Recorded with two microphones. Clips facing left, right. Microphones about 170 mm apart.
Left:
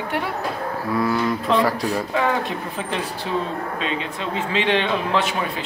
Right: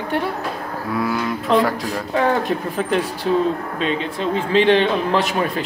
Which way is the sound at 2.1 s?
40° right (ahead or behind).